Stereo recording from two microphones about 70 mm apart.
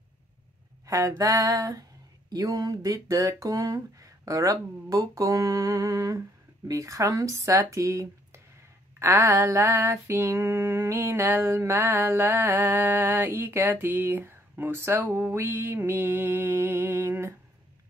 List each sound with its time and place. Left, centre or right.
0.8 s a sound: right
6.7 s speech: right
9.0 s female singing: right